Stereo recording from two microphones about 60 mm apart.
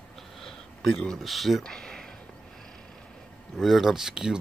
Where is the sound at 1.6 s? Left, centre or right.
Centre.